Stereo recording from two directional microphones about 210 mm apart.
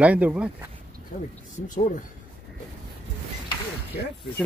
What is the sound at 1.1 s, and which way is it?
Speech, 40° left (ahead or behind).